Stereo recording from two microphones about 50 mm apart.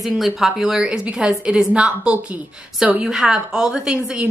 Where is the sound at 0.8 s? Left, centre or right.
Right.